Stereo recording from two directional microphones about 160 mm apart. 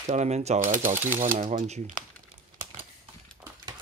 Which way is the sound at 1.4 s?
50° right (ahead or behind).